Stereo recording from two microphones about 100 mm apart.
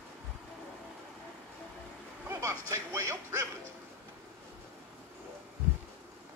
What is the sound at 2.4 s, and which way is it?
Speech, 35° right (ahead or behind).